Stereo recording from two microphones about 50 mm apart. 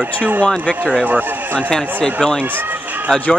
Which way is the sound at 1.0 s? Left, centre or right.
Right.